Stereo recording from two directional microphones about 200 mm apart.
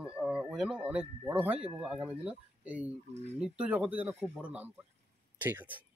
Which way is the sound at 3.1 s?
35° right (ahead or behind).